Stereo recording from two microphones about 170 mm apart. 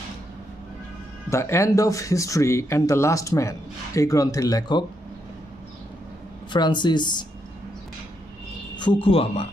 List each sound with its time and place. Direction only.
1.3 s speech: 15° left (ahead or behind)
6.5 s speech: 25° left (ahead or behind)
9.0 s speech: 35° left (ahead or behind)